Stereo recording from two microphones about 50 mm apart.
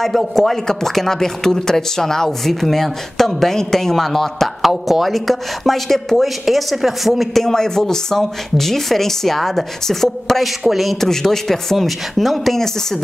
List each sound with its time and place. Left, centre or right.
0.0 s speech: centre